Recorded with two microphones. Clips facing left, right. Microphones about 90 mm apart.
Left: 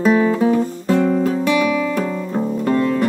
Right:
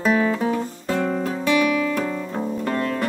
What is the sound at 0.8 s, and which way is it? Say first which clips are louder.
Guitar: left 6 dB; 10° left (ahead or behind).